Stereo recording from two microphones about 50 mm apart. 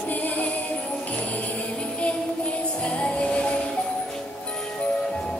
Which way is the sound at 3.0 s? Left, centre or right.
Left.